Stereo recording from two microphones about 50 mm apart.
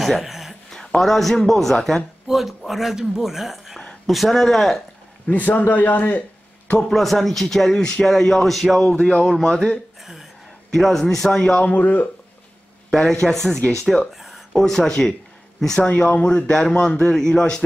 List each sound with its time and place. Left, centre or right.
0.0 s a sound: centre
0.7 s a man's voice: centre
2.2 s speech: centre
5.3 s a man's voice: left
6.8 s speech: centre
7.8 s a man's voice: centre
8.8 s a man's voice: centre
9.2 s a man's voice: centre
10.7 s a man's voice: centre
11.6 s a man's voice: left
12.9 s a man's voice: centre
14.1 s a sound: centre
14.6 s a man's voice: centre
16.1 s a man's voice: left